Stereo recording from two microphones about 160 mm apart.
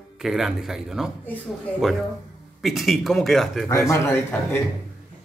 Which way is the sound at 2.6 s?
Centre (ahead or behind).